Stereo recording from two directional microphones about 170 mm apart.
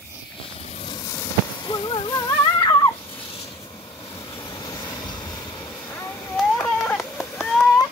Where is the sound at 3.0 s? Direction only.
30° left (ahead or behind).